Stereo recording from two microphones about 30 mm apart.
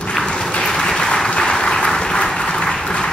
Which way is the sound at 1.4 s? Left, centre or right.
Left.